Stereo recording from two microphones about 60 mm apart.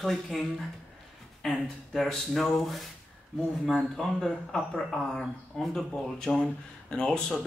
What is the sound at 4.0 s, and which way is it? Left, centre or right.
Speech, centre.